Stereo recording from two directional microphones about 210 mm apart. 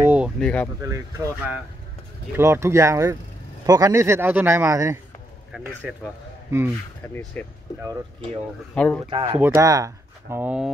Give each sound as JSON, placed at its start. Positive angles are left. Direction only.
{"t": 0.0, "sound": "a sound", "side_deg": -10}
{"t": 0.4, "sound": "speech", "side_deg": 5}
{"t": 0.8, "sound": "speech", "side_deg": -15}
{"t": 7.3, "sound": "speech", "side_deg": 5}
{"t": 8.7, "sound": "speech", "side_deg": 5}
{"t": 9.1, "sound": "speech", "side_deg": -25}